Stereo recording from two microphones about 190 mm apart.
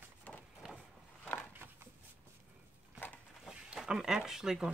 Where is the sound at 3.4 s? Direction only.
5° right (ahead or behind).